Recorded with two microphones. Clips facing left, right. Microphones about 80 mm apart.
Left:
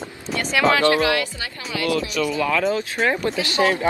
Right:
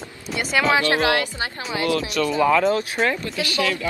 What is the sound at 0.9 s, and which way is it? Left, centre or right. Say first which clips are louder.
Speech: even; right.